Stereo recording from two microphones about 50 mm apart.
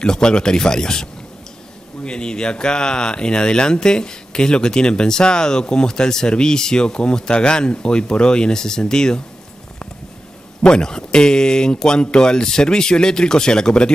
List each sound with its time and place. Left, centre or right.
0.0 s speech: centre
2.0 s speech: centre
10.6 s speech: centre